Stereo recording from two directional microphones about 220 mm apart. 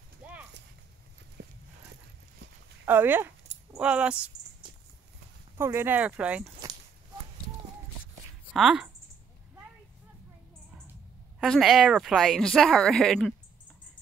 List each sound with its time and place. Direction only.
0.2 s clip-clop: 5° right (ahead or behind)
1.4 s a sound: 50° right (ahead or behind)
2.8 s speech: 10° right (ahead or behind)
5.6 s speech: 10° right (ahead or behind)
8.5 s speech: 5° right (ahead or behind)
11.3 s speech: centre (ahead or behind)